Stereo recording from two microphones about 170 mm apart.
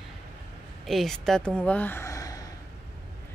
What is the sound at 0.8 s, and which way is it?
Speech, centre (ahead or behind).